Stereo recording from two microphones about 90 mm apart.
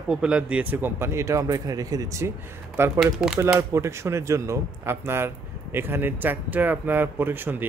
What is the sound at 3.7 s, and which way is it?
A man's voice, 30° right (ahead or behind).